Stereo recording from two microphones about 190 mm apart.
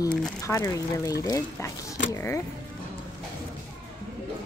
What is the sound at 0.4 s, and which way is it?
Speech, 15° left (ahead or behind).